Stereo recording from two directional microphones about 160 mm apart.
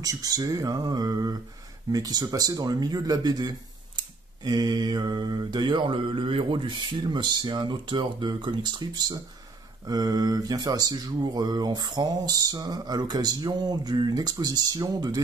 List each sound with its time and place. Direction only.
0.0 s speech: 20° right (ahead or behind)